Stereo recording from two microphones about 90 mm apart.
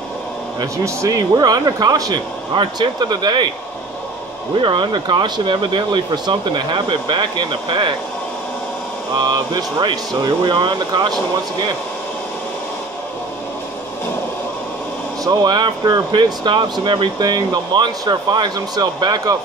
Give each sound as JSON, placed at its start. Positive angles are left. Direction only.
{"t": 0.6, "sound": "speech", "side_deg": -40}
{"t": 2.5, "sound": "speech", "side_deg": -60}
{"t": 4.6, "sound": "speech", "side_deg": -70}
{"t": 9.1, "sound": "speech", "side_deg": -50}
{"t": 15.2, "sound": "speech", "side_deg": -45}